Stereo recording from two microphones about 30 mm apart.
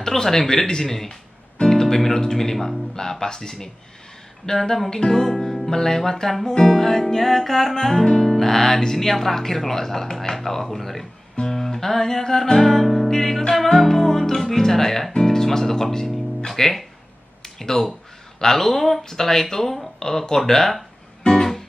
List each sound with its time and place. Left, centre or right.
0.0 s speech: centre
1.6 s music: centre
2.2 s speech: centre
11.5 s music: centre
12.7 s music: centre
13.1 s speech: centre
17.4 s a sound: centre
18.4 s speech: centre
21.3 s music: centre